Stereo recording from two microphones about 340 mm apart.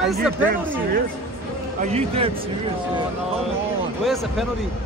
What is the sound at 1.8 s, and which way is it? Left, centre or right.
Speech, centre.